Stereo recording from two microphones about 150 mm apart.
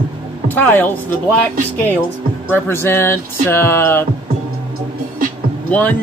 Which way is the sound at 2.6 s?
15° left (ahead or behind).